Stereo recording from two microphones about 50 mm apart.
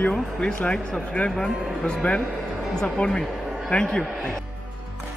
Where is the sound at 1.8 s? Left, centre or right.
Left.